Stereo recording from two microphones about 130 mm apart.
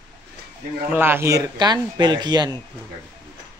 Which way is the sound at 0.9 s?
15° right (ahead or behind).